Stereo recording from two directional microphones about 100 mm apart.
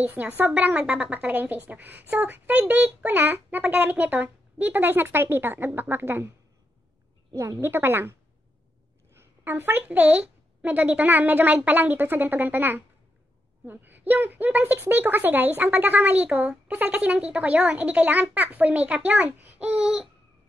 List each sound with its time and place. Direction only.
0.0 s a woman's voice: 20° right (ahead or behind)
7.3 s a child's voice: 30° right (ahead or behind)
19.7 s babbling: 5° right (ahead or behind)